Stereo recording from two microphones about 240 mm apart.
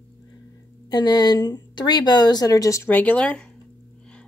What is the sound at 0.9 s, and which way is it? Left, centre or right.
Speech, centre.